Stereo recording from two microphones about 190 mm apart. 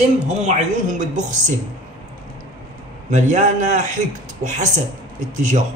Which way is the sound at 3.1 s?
40° right (ahead or behind).